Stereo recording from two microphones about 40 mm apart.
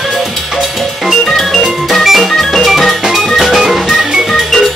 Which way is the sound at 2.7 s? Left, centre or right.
Centre.